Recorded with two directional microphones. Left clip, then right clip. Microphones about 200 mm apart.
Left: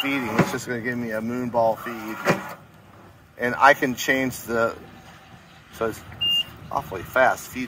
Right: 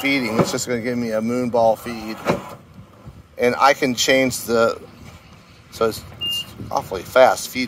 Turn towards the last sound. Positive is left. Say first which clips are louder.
# right 6 dB
turn(degrees=-55)  # may be behind; listen again after turning